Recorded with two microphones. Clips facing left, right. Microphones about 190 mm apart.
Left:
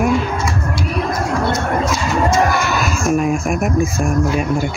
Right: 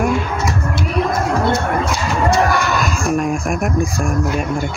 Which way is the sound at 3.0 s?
Centre (ahead or behind).